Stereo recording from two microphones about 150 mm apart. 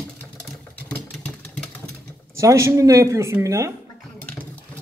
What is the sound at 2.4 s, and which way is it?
Speech, 20° right (ahead or behind).